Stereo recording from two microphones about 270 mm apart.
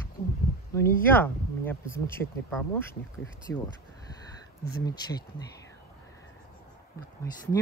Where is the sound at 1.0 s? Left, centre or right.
Centre.